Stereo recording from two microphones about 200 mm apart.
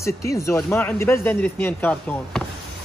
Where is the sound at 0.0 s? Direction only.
15° left (ahead or behind).